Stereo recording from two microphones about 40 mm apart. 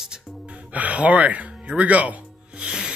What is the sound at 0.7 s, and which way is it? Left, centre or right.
Speech, right.